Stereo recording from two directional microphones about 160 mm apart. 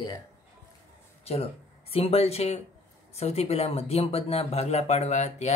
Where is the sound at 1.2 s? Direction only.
40° left (ahead or behind).